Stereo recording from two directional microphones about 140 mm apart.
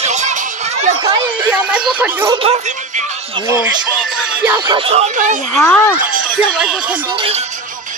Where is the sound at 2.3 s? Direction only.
50° right (ahead or behind).